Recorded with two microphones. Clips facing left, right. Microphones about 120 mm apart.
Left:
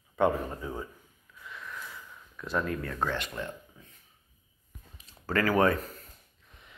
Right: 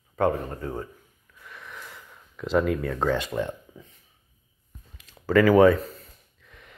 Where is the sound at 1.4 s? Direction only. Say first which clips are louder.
Even; 60° right (ahead or behind); by 2.7 s 90° right.